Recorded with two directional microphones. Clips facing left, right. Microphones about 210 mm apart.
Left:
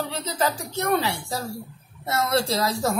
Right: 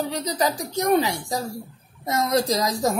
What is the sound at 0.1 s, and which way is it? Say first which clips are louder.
A woman's voice: right 2 dB; 15° right (ahead or behind).